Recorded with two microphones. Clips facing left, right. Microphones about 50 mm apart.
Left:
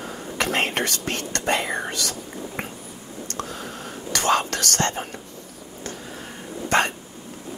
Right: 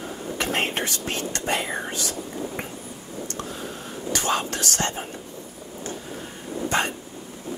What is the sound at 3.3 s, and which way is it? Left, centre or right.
Whispering, left.